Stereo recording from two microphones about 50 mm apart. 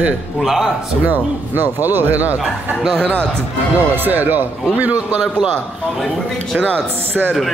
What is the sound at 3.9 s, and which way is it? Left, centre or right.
Speech, right.